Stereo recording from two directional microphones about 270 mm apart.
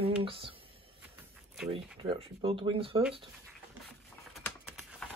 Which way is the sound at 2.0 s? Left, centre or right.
Centre.